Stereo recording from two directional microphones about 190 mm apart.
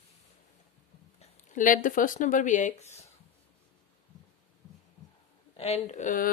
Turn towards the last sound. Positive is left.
turn(degrees=40)  # may be behind; listen again after turning